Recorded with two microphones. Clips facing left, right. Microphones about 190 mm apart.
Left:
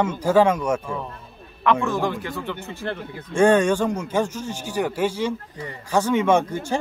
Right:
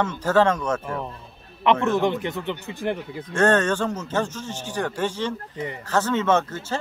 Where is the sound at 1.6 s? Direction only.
20° right (ahead or behind).